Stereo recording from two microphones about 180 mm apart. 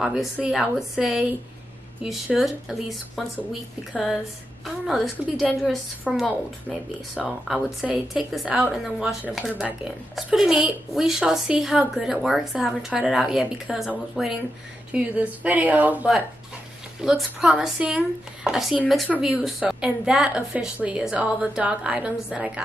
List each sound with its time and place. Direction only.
0.0 s speech: centre (ahead or behind)